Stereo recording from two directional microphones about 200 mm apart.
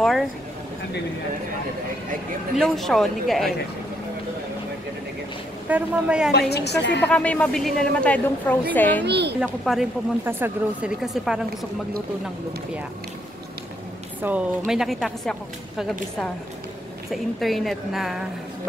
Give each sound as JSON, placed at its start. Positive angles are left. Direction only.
{"t": 2.5, "sound": "speech", "side_deg": 0}
{"t": 5.7, "sound": "speech", "side_deg": -5}
{"t": 6.5, "sound": "a woman's voice", "side_deg": 55}
{"t": 7.0, "sound": "a woman's voice", "side_deg": 5}
{"t": 9.0, "sound": "a woman's voice", "side_deg": -55}
{"t": 9.4, "sound": "speech", "side_deg": -5}
{"t": 14.2, "sound": "speech", "side_deg": -10}
{"t": 17.1, "sound": "speech", "side_deg": 0}